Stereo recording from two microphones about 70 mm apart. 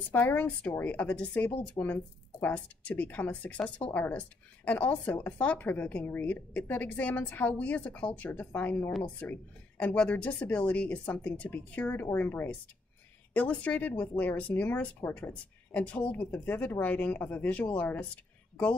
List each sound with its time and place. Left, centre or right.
0.1 s speech: left